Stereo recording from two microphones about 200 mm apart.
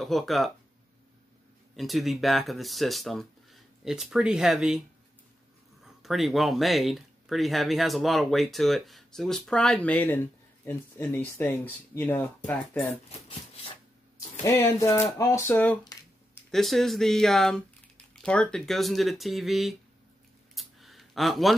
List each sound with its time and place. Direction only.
0.0 s speech: centre (ahead or behind)
1.8 s speech: centre (ahead or behind)
6.0 s speech: centre (ahead or behind)
13.1 s rub: 30° left (ahead or behind)
14.4 s speech: 15° left (ahead or behind); by 19.8 s centre (ahead or behind)
20.5 s a sound: centre (ahead or behind)